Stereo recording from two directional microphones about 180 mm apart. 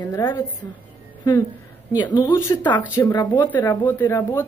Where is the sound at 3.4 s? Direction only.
10° left (ahead or behind).